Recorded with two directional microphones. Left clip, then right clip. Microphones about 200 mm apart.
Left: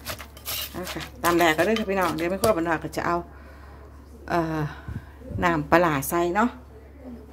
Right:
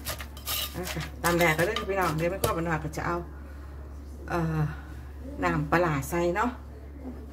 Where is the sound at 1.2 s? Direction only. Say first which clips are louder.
Left 4 dB; 60° left (ahead or behind).